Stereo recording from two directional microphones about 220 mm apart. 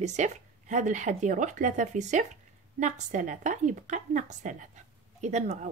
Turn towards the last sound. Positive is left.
turn(degrees=-30)  # may be behind; listen again after turning